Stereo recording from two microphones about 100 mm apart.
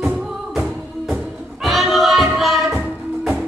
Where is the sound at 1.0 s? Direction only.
Centre (ahead or behind).